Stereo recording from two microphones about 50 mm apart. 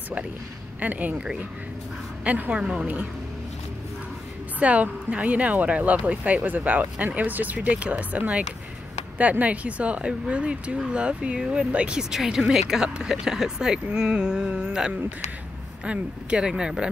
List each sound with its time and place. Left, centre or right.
0.7 s speech: right
1.1 s speech: centre
2.2 s speech: right
2.5 s speech: right
4.6 s speech: right
12.0 s speech: centre